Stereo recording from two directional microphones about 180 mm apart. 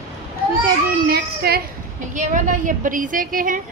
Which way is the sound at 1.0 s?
60° right (ahead or behind).